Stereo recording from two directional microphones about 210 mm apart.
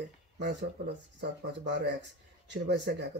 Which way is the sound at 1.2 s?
55° right (ahead or behind).